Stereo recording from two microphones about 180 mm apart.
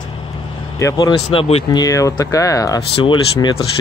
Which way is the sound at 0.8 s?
20° left (ahead or behind).